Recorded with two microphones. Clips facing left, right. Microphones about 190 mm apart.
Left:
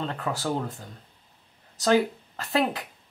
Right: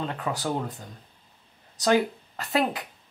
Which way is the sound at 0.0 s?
5° right (ahead or behind).